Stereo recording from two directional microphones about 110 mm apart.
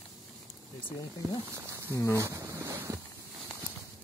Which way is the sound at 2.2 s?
30° right (ahead or behind).